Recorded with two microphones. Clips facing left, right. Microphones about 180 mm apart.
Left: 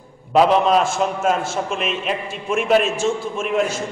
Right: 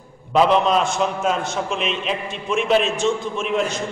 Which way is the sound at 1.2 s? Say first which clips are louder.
Left 2 dB; 45° left (ahead or behind).